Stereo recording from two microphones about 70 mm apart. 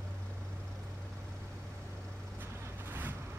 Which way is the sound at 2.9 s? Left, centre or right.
Right.